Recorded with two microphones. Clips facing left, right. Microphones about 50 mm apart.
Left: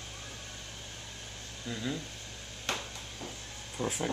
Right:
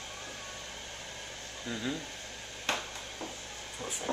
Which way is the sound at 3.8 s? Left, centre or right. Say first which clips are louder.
Left 7 dB; left.